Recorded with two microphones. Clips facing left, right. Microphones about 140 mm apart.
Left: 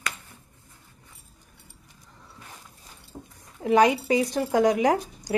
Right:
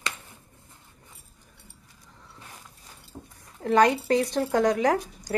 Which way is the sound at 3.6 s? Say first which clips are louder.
Left 1 dB; 10° left (ahead or behind).